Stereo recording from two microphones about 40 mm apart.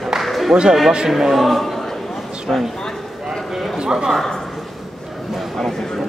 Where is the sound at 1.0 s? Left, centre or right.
Centre.